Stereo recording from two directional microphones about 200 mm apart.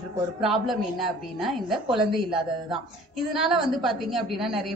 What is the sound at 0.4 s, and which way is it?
A woman's voice, centre (ahead or behind).